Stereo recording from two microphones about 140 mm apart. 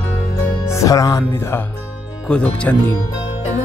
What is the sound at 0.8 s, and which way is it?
Music, 25° left (ahead or behind).